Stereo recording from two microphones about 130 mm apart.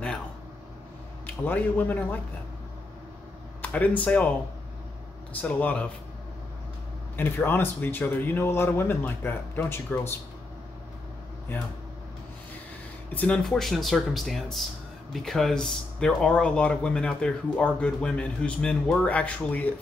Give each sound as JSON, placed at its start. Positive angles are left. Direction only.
{"t": 1.2, "sound": "speech", "side_deg": 15}
{"t": 3.6, "sound": "speech", "side_deg": 10}
{"t": 5.4, "sound": "speech", "side_deg": 10}
{"t": 7.2, "sound": "speech", "side_deg": 15}
{"t": 13.1, "sound": "speech", "side_deg": 15}
{"t": 13.4, "sound": "speech", "side_deg": 0}